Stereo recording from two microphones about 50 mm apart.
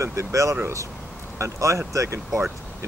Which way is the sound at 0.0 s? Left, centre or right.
Right.